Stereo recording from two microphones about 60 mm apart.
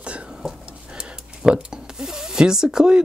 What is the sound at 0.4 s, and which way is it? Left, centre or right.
Speech, centre.